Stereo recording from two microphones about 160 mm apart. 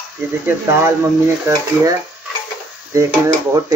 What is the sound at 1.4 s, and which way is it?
Speech, 15° right (ahead or behind).